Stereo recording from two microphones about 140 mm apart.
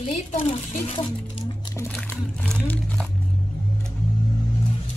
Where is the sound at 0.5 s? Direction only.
45° left (ahead or behind).